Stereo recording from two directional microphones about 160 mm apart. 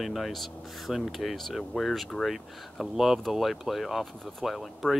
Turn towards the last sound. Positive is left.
turn(degrees=0)  # may be behind; listen again after turning